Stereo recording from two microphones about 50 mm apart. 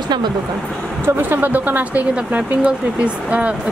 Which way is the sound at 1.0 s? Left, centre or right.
Right.